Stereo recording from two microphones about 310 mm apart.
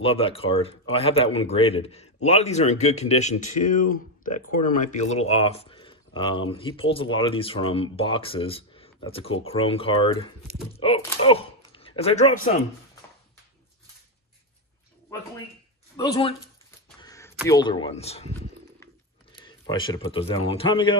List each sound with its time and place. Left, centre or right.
0.0 s speech: centre
16.0 s speech: centre
17.0 s a sound: centre
17.5 s speech: centre
19.4 s speech: centre